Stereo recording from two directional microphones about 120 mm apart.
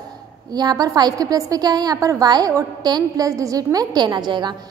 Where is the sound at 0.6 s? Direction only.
35° right (ahead or behind).